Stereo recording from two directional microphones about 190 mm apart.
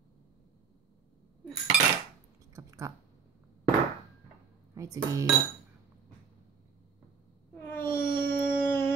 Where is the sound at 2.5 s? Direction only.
20° right (ahead or behind).